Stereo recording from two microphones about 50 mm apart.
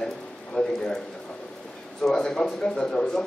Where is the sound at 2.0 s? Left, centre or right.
Centre.